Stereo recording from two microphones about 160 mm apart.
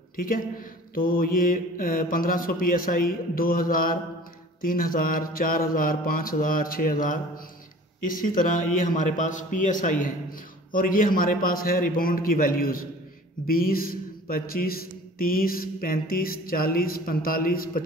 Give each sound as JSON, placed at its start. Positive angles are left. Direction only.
{"t": 0.1, "sound": "a man's voice", "side_deg": 60}
{"t": 0.9, "sound": "mantra", "side_deg": 65}
{"t": 8.7, "sound": "a man's voice", "side_deg": 55}
{"t": 10.7, "sound": "mantra", "side_deg": 60}